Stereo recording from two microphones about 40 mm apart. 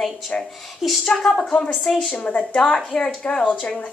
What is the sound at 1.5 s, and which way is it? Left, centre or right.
Speech, left.